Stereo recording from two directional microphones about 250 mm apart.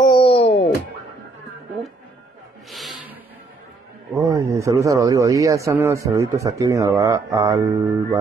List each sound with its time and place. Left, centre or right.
0.0 s music: left
2.7 s a sound: centre
4.2 s a man's voice: centre